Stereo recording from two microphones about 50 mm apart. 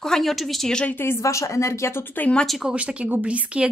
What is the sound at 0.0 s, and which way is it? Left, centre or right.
Speech, centre.